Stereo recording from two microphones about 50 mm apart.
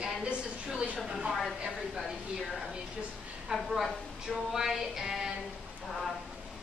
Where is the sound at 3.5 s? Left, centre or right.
Centre.